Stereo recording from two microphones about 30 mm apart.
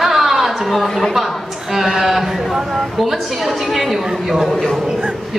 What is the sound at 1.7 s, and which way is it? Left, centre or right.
A man's voice, centre.